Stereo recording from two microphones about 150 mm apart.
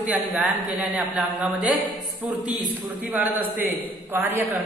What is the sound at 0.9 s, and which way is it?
A man's voice, 5° right (ahead or behind).